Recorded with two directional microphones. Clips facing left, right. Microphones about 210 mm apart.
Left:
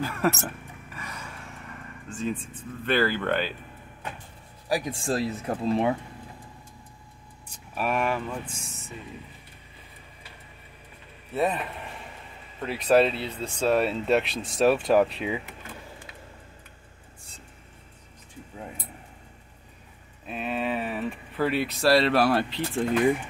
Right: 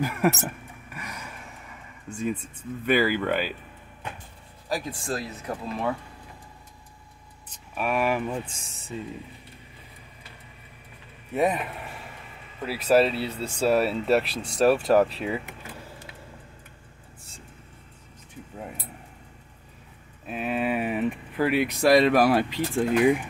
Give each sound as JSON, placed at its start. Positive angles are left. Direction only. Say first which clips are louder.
{"t": 0.0, "sound": "speech", "louder": "right 2 dB", "side_deg": -15}
{"t": 0.9, "sound": "a sound", "louder": "right 1 dB", "side_deg": -10}
{"t": 2.0, "sound": "speech", "louder": "right 1 dB", "side_deg": -10}
{"t": 4.6, "sound": "a man's voice", "louder": "left 3 dB", "side_deg": 15}
{"t": 4.9, "sound": "speech", "louder": "left 4 dB", "side_deg": 30}
{"t": 7.4, "sound": "vehicle", "louder": "even", "side_deg": 5}
{"t": 8.1, "sound": "speech", "louder": "right 3 dB", "side_deg": -15}
{"t": 11.3, "sound": "speech", "louder": "right 2 dB", "side_deg": -10}
{"t": 20.2, "sound": "speech", "louder": "right 2 dB", "side_deg": -5}